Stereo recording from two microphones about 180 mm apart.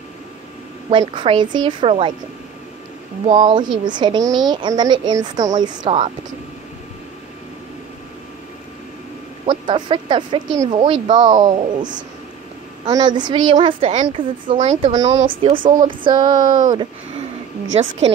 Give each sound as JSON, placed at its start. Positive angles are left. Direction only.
{"t": 0.8, "sound": "speech", "side_deg": -25}
{"t": 3.3, "sound": "speech", "side_deg": -25}
{"t": 9.5, "sound": "speech", "side_deg": -25}
{"t": 15.0, "sound": "speech", "side_deg": -30}